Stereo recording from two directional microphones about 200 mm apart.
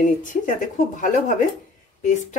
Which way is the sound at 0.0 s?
40° left (ahead or behind).